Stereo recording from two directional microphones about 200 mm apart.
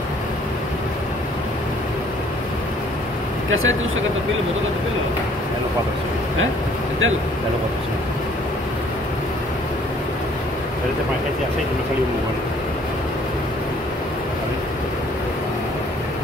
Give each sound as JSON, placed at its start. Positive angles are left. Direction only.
{"t": 3.4, "sound": "speech", "side_deg": -75}